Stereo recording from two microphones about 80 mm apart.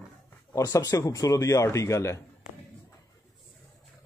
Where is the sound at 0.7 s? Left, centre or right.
Left.